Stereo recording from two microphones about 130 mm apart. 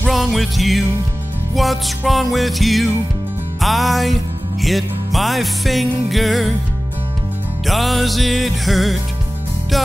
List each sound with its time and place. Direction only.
0.0 s music: centre (ahead or behind)
7.6 s music: centre (ahead or behind)